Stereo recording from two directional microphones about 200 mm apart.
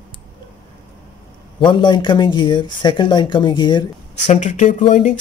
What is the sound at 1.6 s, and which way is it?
Speech, 25° left (ahead or behind).